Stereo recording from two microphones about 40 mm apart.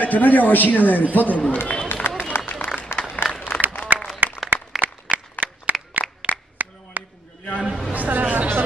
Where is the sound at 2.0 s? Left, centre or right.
Left.